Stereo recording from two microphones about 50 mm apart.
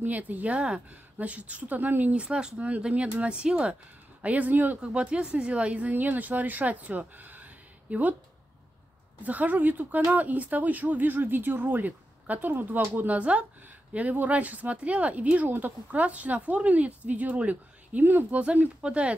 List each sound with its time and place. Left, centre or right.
0.0 s speech: right
2.2 s speech: centre; by 4.7 s right
4.8 s speech: right
9.2 s speech: right